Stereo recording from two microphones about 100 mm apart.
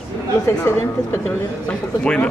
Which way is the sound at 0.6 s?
25° left (ahead or behind).